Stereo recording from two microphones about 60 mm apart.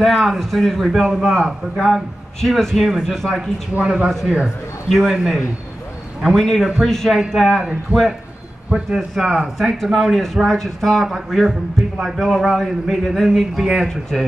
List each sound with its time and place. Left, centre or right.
0.0 s a man's voice: centre
3.7 s speech: centre
4.9 s a man's voice: centre
8.6 s a man's voice: centre